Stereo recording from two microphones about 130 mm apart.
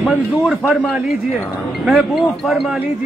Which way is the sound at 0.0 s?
Centre (ahead or behind).